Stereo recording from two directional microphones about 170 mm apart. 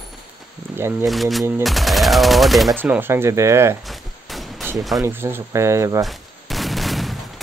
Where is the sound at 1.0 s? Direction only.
Centre (ahead or behind).